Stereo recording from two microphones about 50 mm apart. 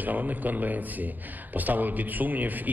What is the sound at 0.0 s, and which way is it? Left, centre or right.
A man's voice, right.